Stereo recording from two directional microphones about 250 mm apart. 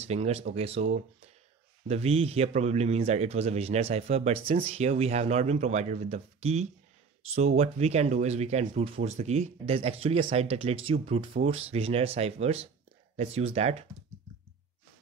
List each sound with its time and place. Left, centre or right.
0.0 s speech: right